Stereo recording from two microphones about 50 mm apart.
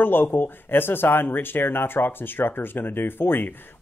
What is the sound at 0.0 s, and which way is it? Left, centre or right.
Speech, left.